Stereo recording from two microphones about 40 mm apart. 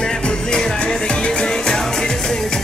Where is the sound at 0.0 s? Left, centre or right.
Centre.